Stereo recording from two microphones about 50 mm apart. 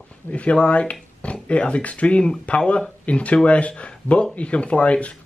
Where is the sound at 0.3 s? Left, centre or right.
Left.